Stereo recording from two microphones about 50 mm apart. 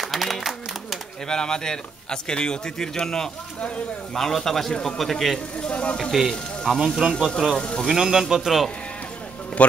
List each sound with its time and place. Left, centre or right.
0.0 s a sound: centre
1.3 s a man's voice: centre
5.6 s speech: left
6.1 s a man's voice: centre
7.5 s a man's voice: centre
7.8 s a man's voice: centre
9.6 s a man's voice: left